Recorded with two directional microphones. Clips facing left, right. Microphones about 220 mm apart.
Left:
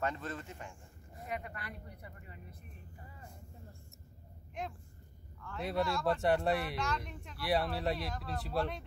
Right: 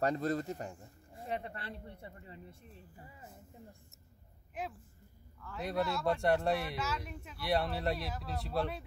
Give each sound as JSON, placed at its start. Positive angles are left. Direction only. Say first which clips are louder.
{"t": 0.0, "sound": "speech", "louder": "right 6 dB", "side_deg": -40}
{"t": 4.6, "sound": "speech", "louder": "right 1 dB", "side_deg": -5}